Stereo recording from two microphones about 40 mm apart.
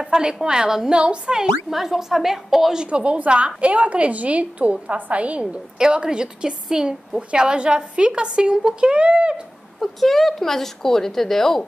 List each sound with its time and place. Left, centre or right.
0.0 s speech: right
0.9 s a woman's voice: right
1.4 s speech: centre
2.9 s a woman's voice: right
5.8 s a woman's voice: centre
8.9 s a woman's voice: right
9.8 s a woman's voice: centre